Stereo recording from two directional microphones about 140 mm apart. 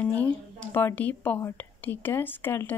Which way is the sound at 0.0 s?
10° left (ahead or behind).